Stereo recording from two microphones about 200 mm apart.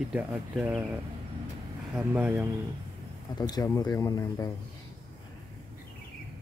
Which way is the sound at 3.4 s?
20° left (ahead or behind).